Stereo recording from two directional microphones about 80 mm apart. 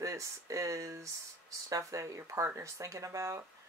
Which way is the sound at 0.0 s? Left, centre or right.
Right.